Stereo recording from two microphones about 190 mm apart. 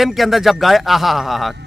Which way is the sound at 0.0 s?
Centre (ahead or behind).